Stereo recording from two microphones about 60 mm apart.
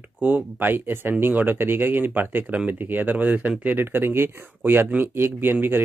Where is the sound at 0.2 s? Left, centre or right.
Right.